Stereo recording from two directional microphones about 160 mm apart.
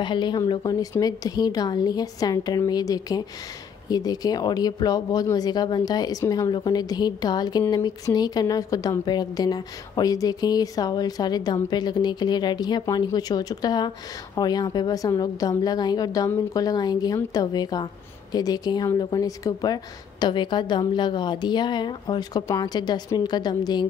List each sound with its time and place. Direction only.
0.0 s a woman's voice: 30° left (ahead or behind)